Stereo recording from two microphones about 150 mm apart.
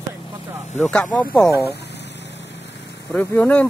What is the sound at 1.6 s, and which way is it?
Speech, 90° left.